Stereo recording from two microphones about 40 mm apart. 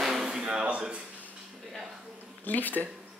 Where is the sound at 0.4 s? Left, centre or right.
Right.